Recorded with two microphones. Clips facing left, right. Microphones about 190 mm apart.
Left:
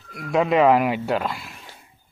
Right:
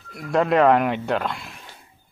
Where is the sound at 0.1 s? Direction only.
5° left (ahead or behind).